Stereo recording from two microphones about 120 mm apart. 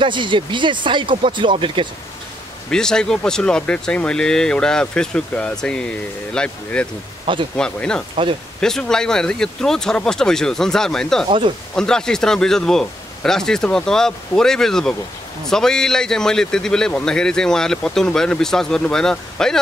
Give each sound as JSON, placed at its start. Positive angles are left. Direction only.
{"t": 0.0, "sound": "speech", "side_deg": -40}
{"t": 2.7, "sound": "a man's voice", "side_deg": 5}
{"t": 11.2, "sound": "speech", "side_deg": -45}
{"t": 11.7, "sound": "a man's voice", "side_deg": 5}